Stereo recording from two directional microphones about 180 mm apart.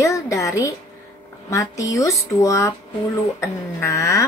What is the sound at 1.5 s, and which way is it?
Speech, 15° left (ahead or behind).